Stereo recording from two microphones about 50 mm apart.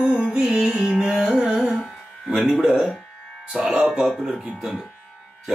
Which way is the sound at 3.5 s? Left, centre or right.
Centre.